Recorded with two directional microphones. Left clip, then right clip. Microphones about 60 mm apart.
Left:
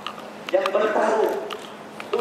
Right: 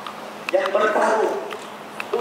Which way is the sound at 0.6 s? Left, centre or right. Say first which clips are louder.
Right 2 dB; left.